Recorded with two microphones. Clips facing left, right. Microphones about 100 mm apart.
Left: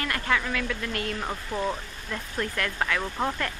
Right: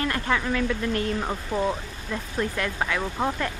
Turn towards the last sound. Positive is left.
turn(degrees=-10)  # may be behind; listen again after turning